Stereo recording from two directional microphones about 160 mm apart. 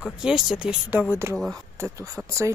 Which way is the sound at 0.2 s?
5° right (ahead or behind).